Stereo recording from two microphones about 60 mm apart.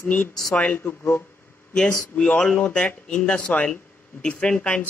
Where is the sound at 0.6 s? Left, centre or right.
Left.